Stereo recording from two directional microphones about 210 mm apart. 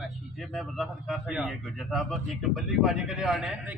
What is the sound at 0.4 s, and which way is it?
A man's voice, centre (ahead or behind).